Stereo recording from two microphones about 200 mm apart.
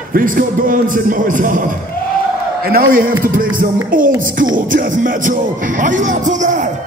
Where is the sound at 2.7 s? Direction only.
45° right (ahead or behind).